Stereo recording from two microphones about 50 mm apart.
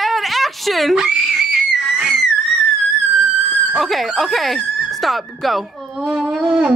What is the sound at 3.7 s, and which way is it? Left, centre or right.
Speech, centre.